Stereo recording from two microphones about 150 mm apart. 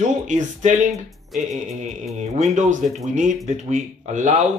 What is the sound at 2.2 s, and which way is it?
Speech, 55° right (ahead or behind).